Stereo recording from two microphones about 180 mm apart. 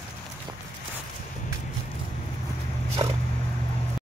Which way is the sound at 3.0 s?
30° right (ahead or behind).